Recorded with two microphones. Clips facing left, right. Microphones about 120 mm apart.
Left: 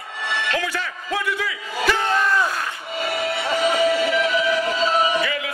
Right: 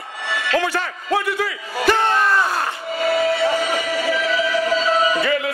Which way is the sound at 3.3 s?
25° left (ahead or behind).